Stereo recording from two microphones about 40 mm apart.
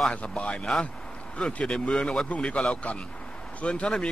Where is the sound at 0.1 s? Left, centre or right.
Left.